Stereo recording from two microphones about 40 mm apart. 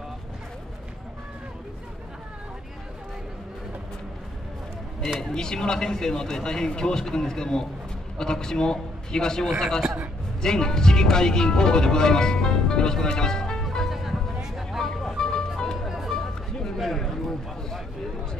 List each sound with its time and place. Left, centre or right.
5.2 s speech: centre
13.7 s music: centre
14.9 s music: centre
16.1 s a sound: centre